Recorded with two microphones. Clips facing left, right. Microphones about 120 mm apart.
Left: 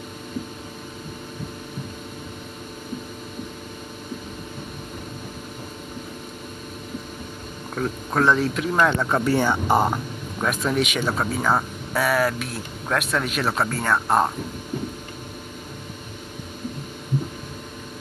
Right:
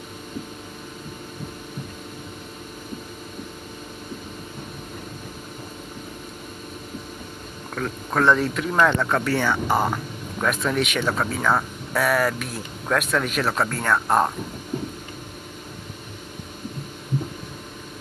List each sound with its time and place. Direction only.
7.7 s speech: 5° left (ahead or behind)
9.2 s speech: 20° left (ahead or behind)
10.4 s speech: 5° left (ahead or behind)